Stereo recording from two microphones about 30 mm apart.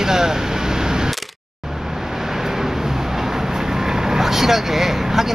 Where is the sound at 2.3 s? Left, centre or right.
Centre.